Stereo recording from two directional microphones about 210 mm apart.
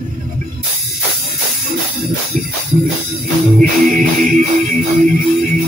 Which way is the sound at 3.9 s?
40° right (ahead or behind).